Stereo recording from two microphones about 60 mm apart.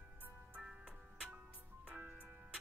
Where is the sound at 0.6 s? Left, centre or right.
Centre.